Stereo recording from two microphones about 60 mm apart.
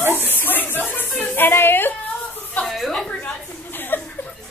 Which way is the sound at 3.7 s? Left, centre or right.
Left.